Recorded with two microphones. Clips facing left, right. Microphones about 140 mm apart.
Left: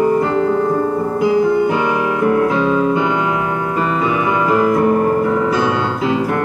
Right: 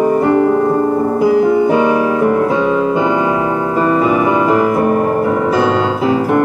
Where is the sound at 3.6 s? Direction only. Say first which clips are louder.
Right 4 dB; 25° right (ahead or behind).